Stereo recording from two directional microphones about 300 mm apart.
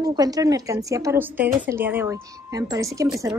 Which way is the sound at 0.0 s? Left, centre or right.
Centre.